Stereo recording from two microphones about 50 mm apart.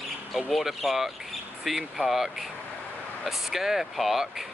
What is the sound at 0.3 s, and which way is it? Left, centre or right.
Speech, centre.